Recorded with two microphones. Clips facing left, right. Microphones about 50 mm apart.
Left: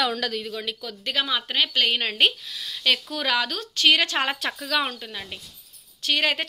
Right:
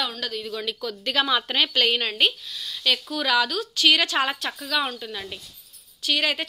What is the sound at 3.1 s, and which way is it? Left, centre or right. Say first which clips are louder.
Speech: right 2 dB; left.